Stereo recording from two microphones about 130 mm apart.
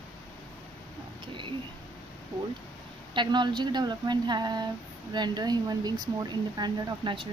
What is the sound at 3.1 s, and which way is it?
Speech, 35° right (ahead or behind).